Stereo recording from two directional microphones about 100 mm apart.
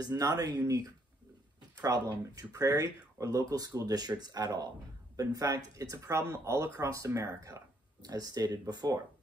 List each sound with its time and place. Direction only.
0.0 s speech: 40° right (ahead or behind)